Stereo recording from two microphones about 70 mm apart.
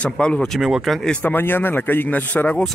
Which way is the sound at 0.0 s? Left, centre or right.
Centre.